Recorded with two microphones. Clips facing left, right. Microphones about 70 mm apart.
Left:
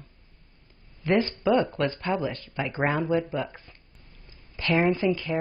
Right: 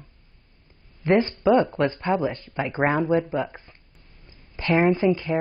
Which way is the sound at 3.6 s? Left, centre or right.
Centre.